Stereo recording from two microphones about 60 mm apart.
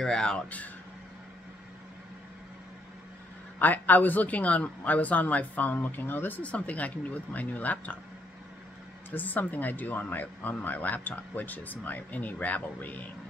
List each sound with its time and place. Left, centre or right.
0.0 s speech: centre
3.5 s a man's voice: left
9.1 s a man's voice: left